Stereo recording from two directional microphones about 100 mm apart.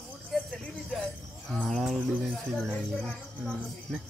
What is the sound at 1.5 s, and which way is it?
Bird, 5° left (ahead or behind).